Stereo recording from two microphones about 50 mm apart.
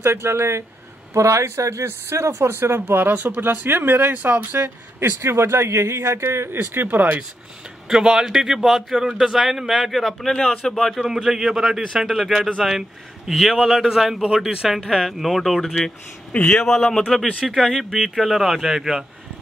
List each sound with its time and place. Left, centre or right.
0.0 s speech: right
1.1 s speech: right
1.9 s speech: right
2.5 s speech: right
5.2 s speech: right
6.7 s speech: right
7.9 s a man's voice: centre
11.1 s a man's voice: centre